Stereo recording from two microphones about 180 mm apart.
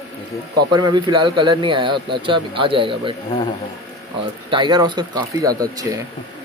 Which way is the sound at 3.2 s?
25° left (ahead or behind).